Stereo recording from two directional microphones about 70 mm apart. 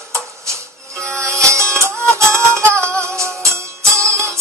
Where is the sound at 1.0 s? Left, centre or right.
Centre.